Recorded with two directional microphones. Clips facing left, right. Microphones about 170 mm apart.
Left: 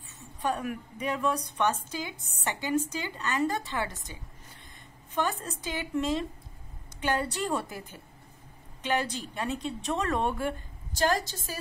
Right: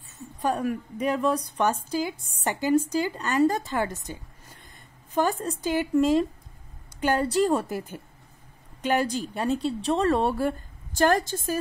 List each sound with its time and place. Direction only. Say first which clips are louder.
0.4 s a woman's voice: right 5 dB; 35° right (ahead or behind)
11.0 s a woman's voice: right 5 dB; 55° right (ahead or behind)